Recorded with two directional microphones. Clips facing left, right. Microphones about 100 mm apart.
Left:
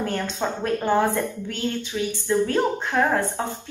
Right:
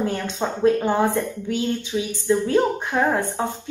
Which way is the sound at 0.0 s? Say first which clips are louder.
Right 1 dB; 10° right (ahead or behind).